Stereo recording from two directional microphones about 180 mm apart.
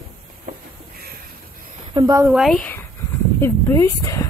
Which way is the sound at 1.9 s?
20° right (ahead or behind).